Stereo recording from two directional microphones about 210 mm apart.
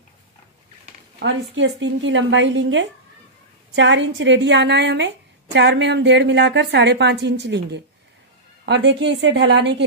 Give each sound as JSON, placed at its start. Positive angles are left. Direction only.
{"t": 1.2, "sound": "a woman's voice", "side_deg": -60}